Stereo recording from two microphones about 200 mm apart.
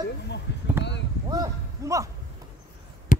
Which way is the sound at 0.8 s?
60° left (ahead or behind).